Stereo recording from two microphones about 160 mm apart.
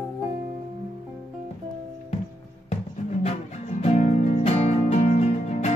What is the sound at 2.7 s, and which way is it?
Music, 45° left (ahead or behind).